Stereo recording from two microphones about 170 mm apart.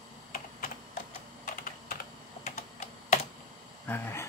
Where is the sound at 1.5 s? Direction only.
55° left (ahead or behind).